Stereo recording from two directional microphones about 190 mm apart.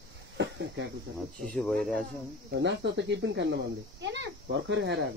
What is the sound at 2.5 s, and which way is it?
Speech, 70° right (ahead or behind).